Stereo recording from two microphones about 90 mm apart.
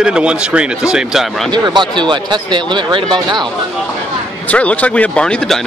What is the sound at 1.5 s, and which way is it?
Speech, 60° right (ahead or behind).